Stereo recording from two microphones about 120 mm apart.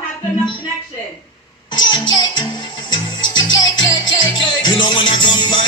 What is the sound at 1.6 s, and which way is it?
Music, 40° left (ahead or behind).